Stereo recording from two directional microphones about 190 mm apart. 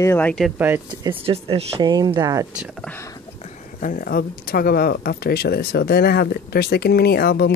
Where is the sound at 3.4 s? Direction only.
45° left (ahead or behind).